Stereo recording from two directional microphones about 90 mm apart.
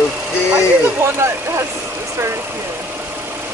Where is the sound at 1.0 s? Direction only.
30° right (ahead or behind).